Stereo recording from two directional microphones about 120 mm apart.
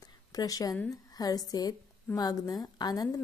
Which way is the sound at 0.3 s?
30° left (ahead or behind).